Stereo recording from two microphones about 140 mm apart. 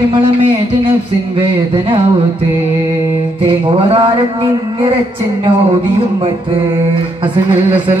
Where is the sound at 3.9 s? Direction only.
40° right (ahead or behind).